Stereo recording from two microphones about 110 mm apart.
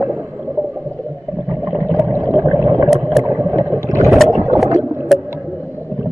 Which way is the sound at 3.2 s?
30° right (ahead or behind).